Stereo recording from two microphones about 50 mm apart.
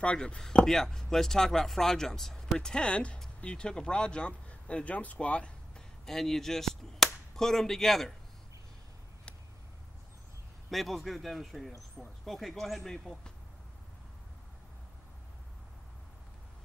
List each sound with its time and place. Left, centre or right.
0.0 s speech: left
0.7 s speech: centre; by 5.5 s left
5.8 s speech: centre
10.7 s speech: centre